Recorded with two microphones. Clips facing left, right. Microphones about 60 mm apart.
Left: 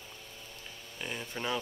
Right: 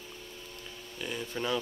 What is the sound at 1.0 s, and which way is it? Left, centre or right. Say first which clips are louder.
Speech: right 2 dB; left.